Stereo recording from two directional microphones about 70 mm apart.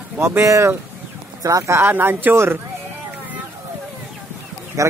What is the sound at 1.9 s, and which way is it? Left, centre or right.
Speech, right.